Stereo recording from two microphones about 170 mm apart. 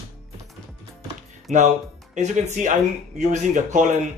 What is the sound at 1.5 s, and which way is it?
Speech, 40° right (ahead or behind).